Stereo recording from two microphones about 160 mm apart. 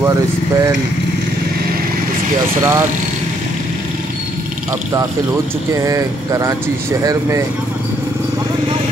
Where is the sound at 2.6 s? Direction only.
15° right (ahead or behind).